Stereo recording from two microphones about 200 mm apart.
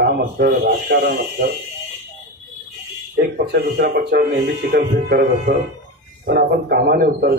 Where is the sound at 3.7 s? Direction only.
50° right (ahead or behind).